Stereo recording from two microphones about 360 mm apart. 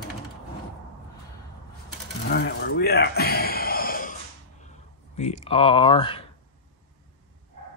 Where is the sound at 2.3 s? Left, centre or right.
Left.